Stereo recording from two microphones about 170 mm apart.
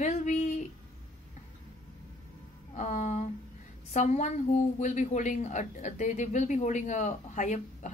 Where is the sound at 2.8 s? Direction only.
45° left (ahead or behind).